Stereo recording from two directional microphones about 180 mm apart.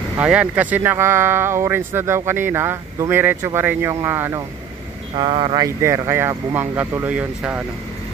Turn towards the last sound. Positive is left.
turn(degrees=-5)  # may be behind; listen again after turning